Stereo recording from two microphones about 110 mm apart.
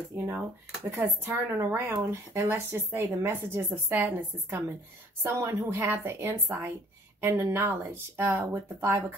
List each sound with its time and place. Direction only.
0.8 s speech: 20° right (ahead or behind)